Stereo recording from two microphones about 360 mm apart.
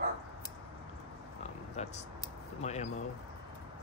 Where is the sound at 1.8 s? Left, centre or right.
Centre.